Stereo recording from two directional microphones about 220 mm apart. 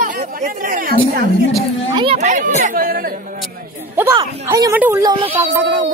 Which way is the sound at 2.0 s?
30° right (ahead or behind).